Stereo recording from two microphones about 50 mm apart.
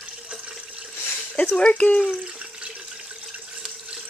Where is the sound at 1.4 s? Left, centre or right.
Left.